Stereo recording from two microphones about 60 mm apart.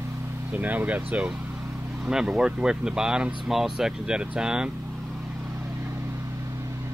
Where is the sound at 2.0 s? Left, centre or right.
Centre.